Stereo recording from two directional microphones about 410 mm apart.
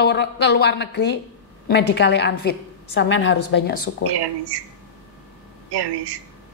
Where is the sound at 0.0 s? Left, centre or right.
Left.